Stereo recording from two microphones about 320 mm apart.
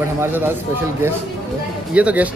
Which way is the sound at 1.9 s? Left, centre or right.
Centre.